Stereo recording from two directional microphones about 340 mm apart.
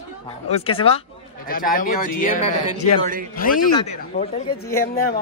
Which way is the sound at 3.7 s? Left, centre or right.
Centre.